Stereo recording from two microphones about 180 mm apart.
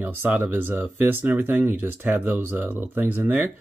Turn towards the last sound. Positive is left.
turn(degrees=-10)  # may be behind; listen again after turning